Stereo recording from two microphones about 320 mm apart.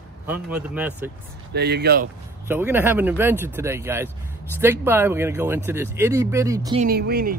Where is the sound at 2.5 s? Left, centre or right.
Centre.